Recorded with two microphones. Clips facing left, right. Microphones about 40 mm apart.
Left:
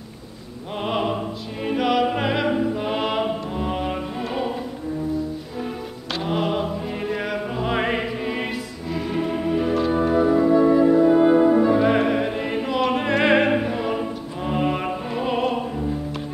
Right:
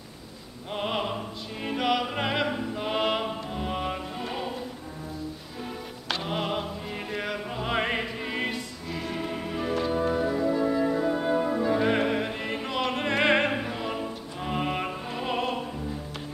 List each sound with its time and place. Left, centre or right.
0.7 s opera: centre
1.7 s music: centre
2.4 s music: centre
2.7 s music: centre
6.2 s music: centre
9.8 s music: left
11.7 s opera: centre
14.4 s music: centre